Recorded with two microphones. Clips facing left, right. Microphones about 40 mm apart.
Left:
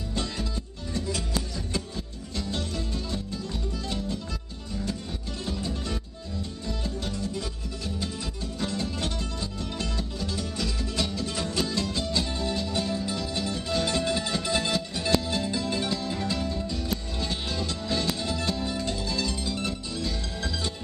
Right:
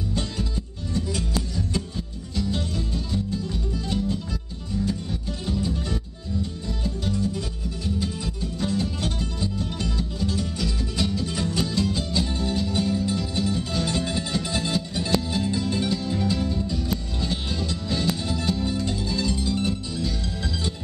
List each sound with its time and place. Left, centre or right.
2.3 s music: centre
5.5 s music: centre
9.2 s music: centre